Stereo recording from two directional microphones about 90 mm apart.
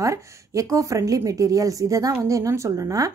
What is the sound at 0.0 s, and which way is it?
Speech, 35° right (ahead or behind).